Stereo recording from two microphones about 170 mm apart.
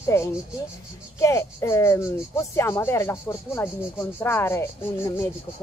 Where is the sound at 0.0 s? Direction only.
15° left (ahead or behind).